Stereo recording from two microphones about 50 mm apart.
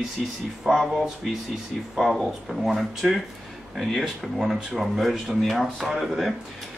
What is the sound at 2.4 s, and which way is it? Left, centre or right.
Speech, centre.